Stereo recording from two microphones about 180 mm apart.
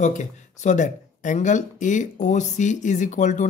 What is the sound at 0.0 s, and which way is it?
Speech, 40° left (ahead or behind).